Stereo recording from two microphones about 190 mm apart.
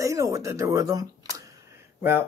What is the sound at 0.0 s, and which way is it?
Speech, 15° right (ahead or behind).